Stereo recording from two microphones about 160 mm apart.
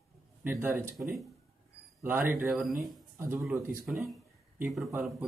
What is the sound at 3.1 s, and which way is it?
A man's voice, 15° right (ahead or behind).